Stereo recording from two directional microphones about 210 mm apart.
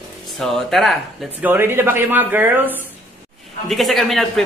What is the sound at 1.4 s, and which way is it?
Speech, 10° right (ahead or behind).